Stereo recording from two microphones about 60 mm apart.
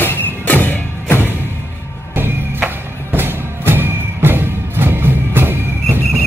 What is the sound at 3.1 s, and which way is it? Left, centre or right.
Music, right.